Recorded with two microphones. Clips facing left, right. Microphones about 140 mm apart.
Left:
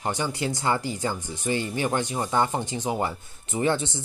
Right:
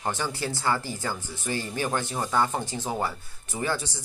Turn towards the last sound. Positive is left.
turn(degrees=25)  # may be behind; listen again after turning